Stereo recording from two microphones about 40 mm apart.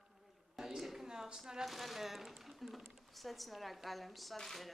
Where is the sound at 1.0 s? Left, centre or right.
Centre.